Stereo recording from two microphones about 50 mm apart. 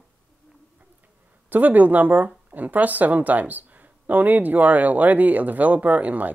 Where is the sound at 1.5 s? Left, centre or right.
Right.